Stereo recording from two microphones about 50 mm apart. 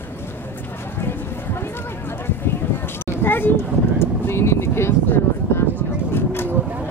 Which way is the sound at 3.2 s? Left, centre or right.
Left.